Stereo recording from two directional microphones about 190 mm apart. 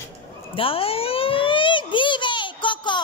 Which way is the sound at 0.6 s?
30° left (ahead or behind).